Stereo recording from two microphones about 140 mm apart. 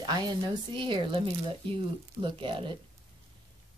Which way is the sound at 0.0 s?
30° right (ahead or behind).